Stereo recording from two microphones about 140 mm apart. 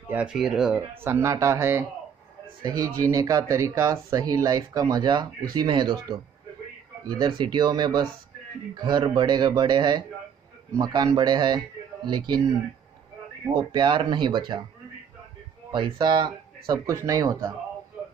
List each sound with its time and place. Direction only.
0.1 s speech: 5° right (ahead or behind)
1.0 s speech: 20° right (ahead or behind)
13.5 s speech: 30° right (ahead or behind)
15.7 s speech: 35° right (ahead or behind)